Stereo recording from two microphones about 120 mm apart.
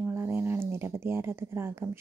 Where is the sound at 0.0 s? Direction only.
20° right (ahead or behind).